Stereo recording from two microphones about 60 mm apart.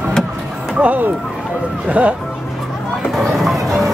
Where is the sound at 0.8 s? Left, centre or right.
Right.